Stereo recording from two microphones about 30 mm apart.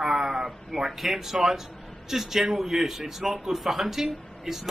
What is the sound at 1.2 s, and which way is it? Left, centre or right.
A man's voice, centre.